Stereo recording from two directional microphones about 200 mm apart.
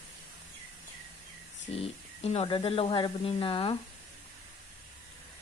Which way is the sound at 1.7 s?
30° left (ahead or behind).